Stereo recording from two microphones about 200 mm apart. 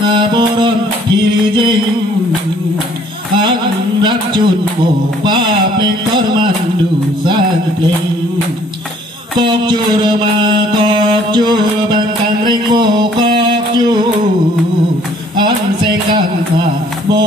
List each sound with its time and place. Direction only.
0.0 s music: 20° right (ahead or behind)
4.0 s mantra: 25° right (ahead or behind)
9.4 s mantra: 20° right (ahead or behind)
12.4 s music: 20° right (ahead or behind)